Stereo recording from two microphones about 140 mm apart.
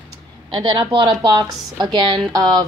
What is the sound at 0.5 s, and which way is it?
Speech, 35° right (ahead or behind).